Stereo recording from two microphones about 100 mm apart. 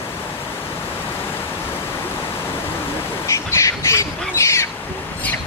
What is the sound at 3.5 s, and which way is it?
Squawk, 30° left (ahead or behind).